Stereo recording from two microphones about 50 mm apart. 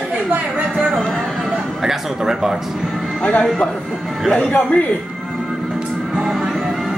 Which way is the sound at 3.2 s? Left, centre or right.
Left.